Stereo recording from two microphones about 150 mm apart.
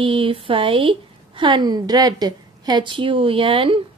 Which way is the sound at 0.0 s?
35° right (ahead or behind).